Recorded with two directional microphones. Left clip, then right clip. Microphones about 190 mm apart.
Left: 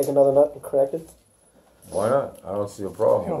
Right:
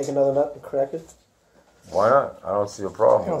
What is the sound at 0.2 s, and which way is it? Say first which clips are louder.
Speech: left 3 dB; 40° right (ahead or behind).